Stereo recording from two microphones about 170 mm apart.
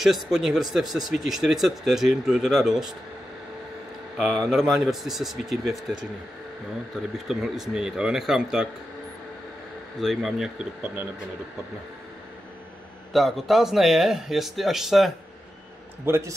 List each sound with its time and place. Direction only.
0.0 s speech: 5° right (ahead or behind)
4.2 s speech: centre (ahead or behind)
7.2 s speech: centre (ahead or behind)
9.9 s speech: centre (ahead or behind)
13.1 s speech: centre (ahead or behind)
16.1 s a man's voice: 15° right (ahead or behind)